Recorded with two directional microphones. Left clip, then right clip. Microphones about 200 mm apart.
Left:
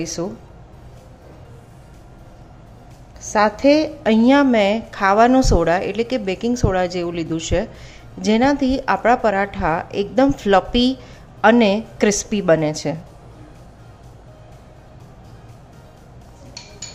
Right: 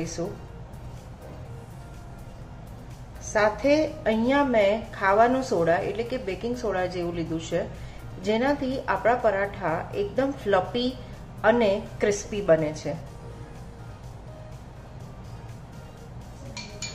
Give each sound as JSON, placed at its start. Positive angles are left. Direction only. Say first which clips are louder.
{"t": 3.2, "sound": "a woman's voice", "louder": "left 6 dB", "side_deg": 45}